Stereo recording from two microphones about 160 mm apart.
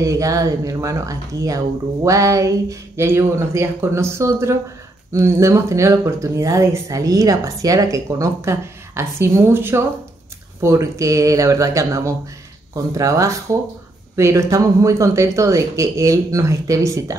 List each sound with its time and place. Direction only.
0.0 s speech: 20° right (ahead or behind)